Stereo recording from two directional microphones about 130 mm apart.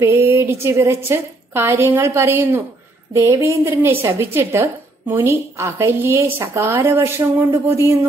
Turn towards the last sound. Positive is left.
turn(degrees=-20)  # may be behind; listen again after turning